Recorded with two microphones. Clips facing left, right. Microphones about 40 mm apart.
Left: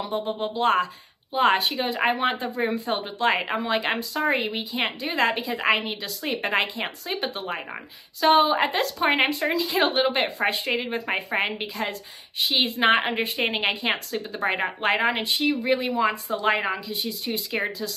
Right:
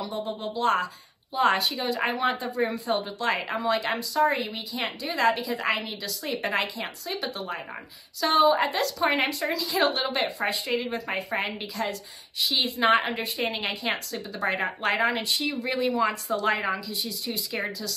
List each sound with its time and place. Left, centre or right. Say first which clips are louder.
0.0 s a woman's voice: left 4 dB; left